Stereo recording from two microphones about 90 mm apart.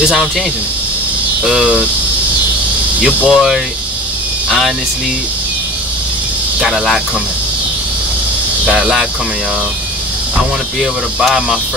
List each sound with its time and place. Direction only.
0.0 s speech: 10° right (ahead or behind)
1.4 s speech: 10° right (ahead or behind)
3.3 s speech: centre (ahead or behind)
6.6 s speech: 5° left (ahead or behind)
8.7 s speech: centre (ahead or behind)
10.8 s speech: 5° right (ahead or behind)